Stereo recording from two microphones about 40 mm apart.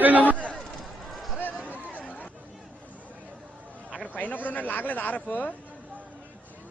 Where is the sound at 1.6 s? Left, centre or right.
Right.